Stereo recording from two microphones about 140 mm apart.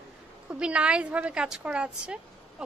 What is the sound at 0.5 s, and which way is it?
A woman's voice, 10° right (ahead or behind).